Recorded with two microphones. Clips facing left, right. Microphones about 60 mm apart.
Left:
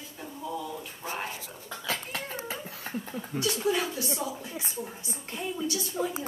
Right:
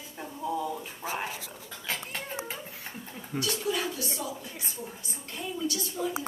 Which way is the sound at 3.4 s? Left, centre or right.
Left.